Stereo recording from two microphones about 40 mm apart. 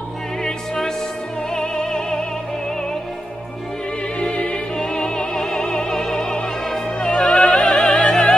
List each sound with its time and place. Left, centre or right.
0.4 s music: centre
4.2 s music: left